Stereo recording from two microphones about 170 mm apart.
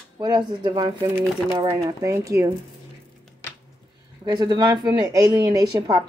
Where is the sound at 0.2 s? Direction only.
25° right (ahead or behind).